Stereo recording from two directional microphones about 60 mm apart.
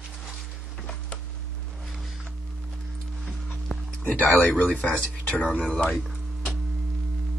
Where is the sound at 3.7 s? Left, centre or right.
Centre.